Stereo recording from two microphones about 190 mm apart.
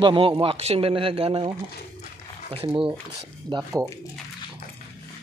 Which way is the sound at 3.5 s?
20° right (ahead or behind).